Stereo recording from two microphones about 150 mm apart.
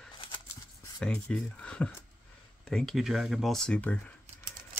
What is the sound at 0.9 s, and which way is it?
Speech, 5° left (ahead or behind).